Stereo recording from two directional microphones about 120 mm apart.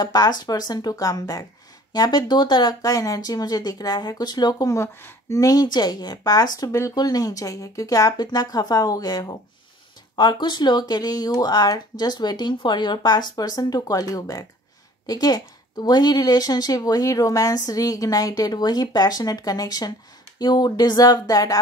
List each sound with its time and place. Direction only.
0.0 s speech: 35° left (ahead or behind)